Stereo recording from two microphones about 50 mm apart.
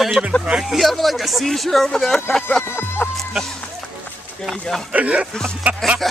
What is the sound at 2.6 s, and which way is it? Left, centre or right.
Speech, left.